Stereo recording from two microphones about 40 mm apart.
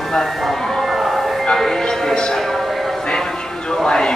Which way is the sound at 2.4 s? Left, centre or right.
Centre.